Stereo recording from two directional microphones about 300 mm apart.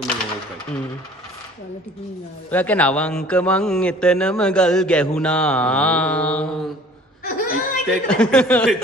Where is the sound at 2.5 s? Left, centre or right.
Centre.